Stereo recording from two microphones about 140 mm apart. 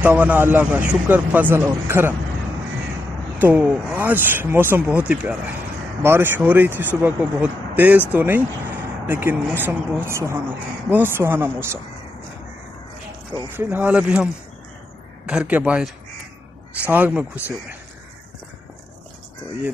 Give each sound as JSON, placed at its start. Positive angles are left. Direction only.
{"t": 0.0, "sound": "speech", "side_deg": -10}
{"t": 3.3, "sound": "speech", "side_deg": -10}
{"t": 13.6, "sound": "speech", "side_deg": -15}
{"t": 16.9, "sound": "speech", "side_deg": -10}